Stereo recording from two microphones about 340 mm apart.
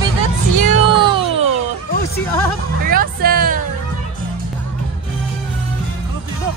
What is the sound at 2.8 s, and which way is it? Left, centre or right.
Music, right.